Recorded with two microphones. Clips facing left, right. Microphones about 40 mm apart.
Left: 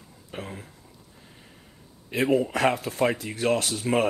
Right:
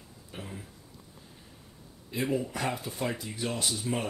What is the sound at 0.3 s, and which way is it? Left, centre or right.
Speech, left.